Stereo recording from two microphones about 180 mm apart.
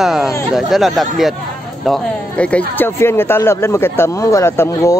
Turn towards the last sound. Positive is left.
turn(degrees=15)  # may be behind; listen again after turning